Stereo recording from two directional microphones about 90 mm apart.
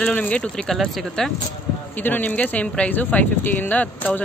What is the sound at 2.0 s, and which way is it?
Speech, 20° left (ahead or behind).